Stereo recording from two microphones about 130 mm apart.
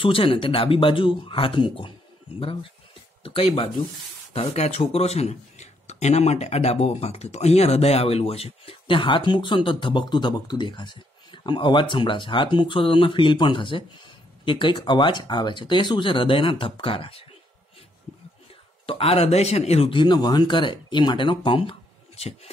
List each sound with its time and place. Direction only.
0.0 s speech: 45° left (ahead or behind)
3.3 s speech: 45° left (ahead or behind)
4.3 s speech: 55° left (ahead or behind)
18.9 s speech: 50° left (ahead or behind)